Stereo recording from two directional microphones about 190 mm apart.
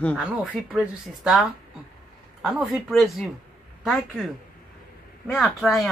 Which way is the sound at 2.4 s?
Centre (ahead or behind).